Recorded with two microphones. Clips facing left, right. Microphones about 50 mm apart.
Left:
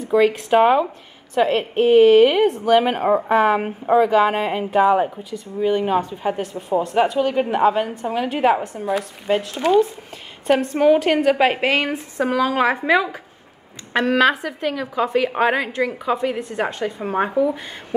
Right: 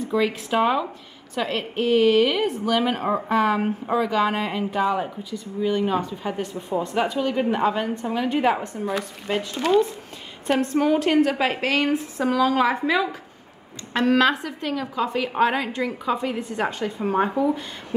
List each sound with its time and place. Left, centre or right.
0.5 s a woman's voice: left; by 9.8 s centre
10.6 s a woman's voice: centre